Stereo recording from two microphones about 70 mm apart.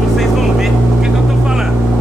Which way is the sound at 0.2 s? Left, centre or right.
Centre.